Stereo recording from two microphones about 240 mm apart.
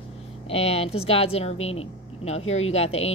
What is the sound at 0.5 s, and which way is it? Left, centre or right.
A woman's voice, left.